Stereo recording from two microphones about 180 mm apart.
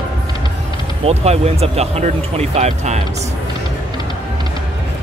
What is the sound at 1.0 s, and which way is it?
Speech, 35° right (ahead or behind).